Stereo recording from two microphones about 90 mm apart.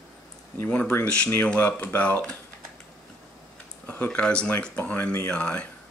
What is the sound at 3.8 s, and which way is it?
Speech, 15° left (ahead or behind).